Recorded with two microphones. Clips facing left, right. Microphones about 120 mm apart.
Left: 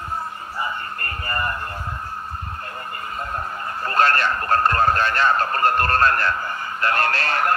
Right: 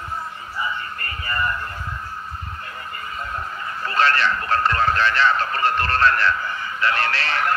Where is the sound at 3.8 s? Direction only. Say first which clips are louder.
Left 1 dB; 45° left (ahead or behind).